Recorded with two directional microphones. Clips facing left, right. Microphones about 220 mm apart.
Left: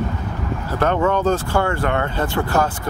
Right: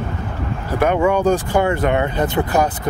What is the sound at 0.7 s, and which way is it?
Speech, 10° right (ahead or behind).